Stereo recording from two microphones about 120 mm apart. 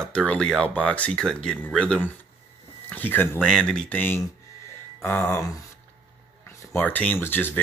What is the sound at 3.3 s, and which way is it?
Speech, 5° left (ahead or behind).